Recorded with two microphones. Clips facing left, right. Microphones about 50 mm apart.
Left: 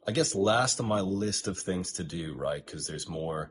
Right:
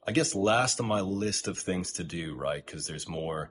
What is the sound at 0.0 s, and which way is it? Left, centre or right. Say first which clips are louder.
Speech: even; right.